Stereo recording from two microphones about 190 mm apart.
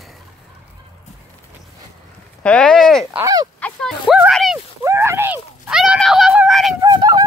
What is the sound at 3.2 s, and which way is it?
Speech, 20° right (ahead or behind).